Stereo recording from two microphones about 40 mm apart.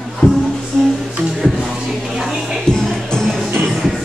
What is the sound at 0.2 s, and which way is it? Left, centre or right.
Music, centre.